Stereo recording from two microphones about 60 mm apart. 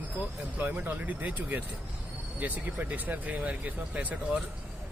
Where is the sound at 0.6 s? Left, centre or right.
Right.